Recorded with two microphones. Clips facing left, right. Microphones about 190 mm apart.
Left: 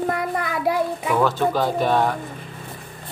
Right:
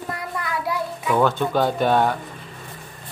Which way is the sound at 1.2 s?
Centre (ahead or behind).